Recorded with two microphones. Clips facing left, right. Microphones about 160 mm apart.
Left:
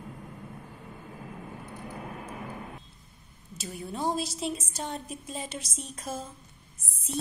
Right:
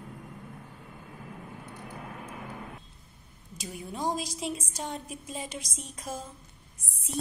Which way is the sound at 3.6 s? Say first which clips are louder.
Left 1 dB; 10° right (ahead or behind).